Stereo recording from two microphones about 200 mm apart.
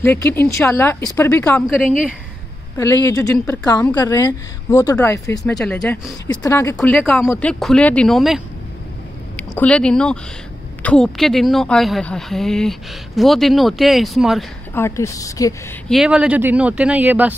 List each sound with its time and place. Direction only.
0.0 s a woman's voice: 10° left (ahead or behind)
2.8 s a woman's voice: 15° left (ahead or behind)
5.4 s a woman's voice: centre (ahead or behind)
9.4 s a woman's voice: 5° left (ahead or behind)
14.7 s a woman's voice: 15° left (ahead or behind)
15.9 s speech: 5° right (ahead or behind)